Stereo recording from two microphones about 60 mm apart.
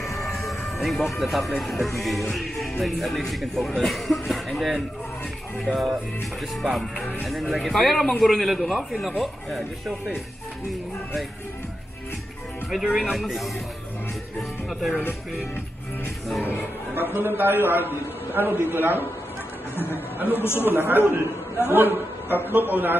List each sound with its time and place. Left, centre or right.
0.2 s music: centre
1.6 s speech: centre
6.6 s speech: centre
12.6 s speech: centre
14.7 s speech: centre
16.9 s a man's voice: right
20.3 s speech: left
20.6 s a man's voice: right